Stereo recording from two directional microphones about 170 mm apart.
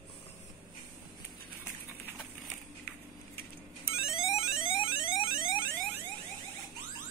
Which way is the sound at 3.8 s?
35° left (ahead or behind).